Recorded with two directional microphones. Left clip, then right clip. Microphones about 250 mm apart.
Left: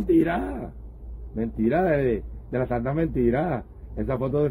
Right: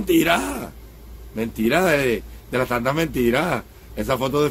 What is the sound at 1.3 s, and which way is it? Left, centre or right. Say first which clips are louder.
Speech: right 4 dB; centre.